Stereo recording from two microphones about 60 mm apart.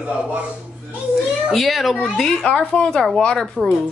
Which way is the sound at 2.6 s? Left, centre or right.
Left.